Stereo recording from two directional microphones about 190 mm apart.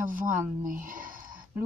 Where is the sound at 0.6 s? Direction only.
45° right (ahead or behind).